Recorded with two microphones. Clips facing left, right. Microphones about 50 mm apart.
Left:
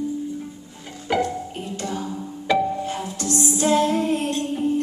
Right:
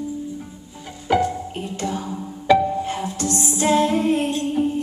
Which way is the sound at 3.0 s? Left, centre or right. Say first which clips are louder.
Right 1 dB; right.